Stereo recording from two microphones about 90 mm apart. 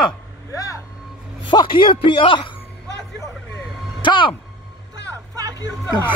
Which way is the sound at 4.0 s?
65° left (ahead or behind).